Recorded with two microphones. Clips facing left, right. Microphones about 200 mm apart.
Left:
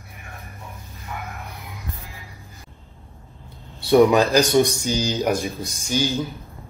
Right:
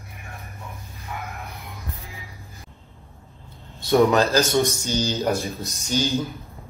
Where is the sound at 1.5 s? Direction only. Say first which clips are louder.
Left 1 dB; centre (ahead or behind).